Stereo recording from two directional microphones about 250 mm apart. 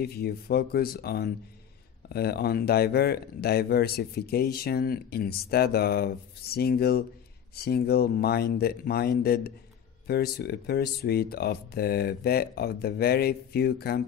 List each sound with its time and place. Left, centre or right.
0.0 s speech: left